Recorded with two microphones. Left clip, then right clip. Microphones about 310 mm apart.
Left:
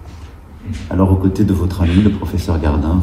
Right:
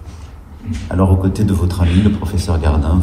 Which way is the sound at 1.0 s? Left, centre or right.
Centre.